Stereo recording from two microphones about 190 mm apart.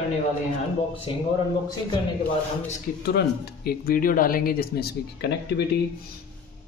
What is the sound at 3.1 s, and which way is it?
Speech, 55° left (ahead or behind).